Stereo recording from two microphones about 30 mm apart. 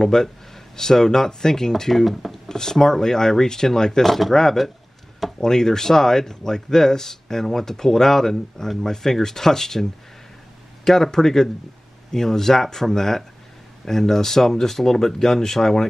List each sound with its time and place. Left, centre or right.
0.0 s speech: centre
1.8 s speech: centre
2.4 s speech: centre